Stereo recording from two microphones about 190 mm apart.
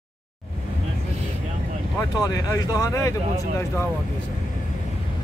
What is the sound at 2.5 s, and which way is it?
Speech, 15° left (ahead or behind).